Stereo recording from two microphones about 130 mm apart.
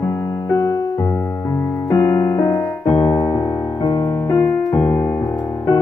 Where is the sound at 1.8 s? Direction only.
20° left (ahead or behind).